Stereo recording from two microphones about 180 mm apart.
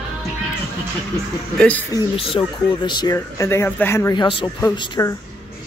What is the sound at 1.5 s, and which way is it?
Speech, 10° left (ahead or behind).